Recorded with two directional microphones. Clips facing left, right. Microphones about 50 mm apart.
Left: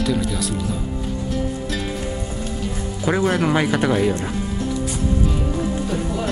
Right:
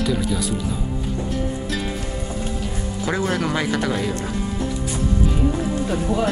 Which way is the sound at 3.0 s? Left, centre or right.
Centre.